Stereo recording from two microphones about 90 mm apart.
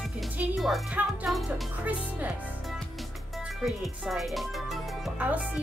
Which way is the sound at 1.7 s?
15° right (ahead or behind).